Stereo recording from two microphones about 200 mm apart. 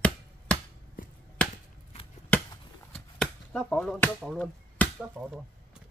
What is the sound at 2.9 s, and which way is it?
Shuffling cards, 5° left (ahead or behind).